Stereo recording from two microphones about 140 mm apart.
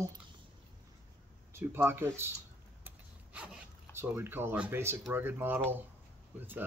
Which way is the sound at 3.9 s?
15° right (ahead or behind).